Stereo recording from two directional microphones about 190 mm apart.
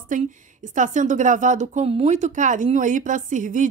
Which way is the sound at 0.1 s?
45° right (ahead or behind).